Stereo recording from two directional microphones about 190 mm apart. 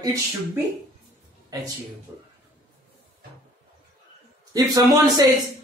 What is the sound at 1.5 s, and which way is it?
Speech, 20° right (ahead or behind).